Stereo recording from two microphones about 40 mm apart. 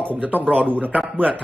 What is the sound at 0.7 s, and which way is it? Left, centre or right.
Speech, right.